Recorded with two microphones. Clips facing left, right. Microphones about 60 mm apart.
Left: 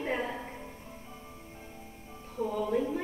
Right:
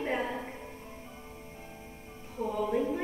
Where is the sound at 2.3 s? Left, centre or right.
Centre.